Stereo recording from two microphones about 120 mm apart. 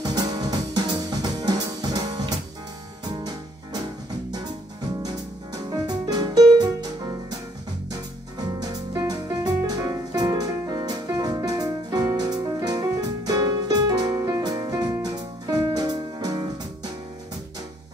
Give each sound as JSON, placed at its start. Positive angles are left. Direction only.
{"t": 0.1, "sound": "music", "side_deg": -30}
{"t": 5.0, "sound": "music", "side_deg": -35}
{"t": 8.9, "sound": "music", "side_deg": -35}